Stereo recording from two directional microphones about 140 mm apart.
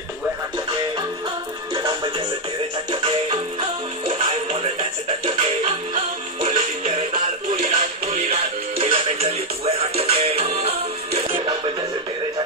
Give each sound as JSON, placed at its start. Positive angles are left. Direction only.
{"t": 1.8, "sound": "music", "side_deg": -30}
{"t": 6.4, "sound": "music", "side_deg": -55}